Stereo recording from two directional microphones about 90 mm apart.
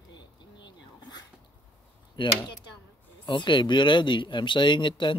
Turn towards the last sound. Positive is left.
turn(degrees=60)  # may be behind; listen again after turning